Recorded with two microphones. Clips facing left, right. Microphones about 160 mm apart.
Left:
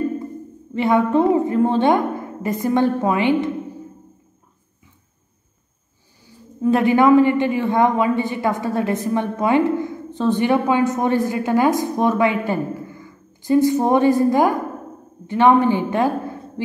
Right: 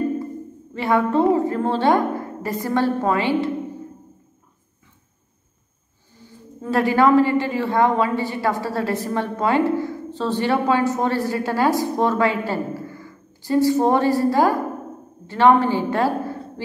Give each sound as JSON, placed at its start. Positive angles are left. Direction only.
{"t": 0.7, "sound": "a woman's voice", "side_deg": 20}
{"t": 6.2, "sound": "speech", "side_deg": 15}